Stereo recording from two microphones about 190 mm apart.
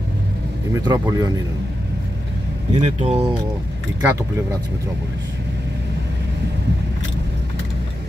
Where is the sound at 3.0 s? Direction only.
30° right (ahead or behind).